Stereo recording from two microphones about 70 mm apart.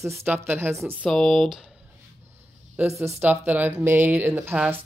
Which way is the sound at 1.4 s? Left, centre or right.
Centre.